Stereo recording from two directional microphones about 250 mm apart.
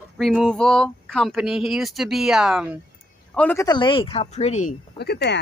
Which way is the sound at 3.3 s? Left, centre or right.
Centre.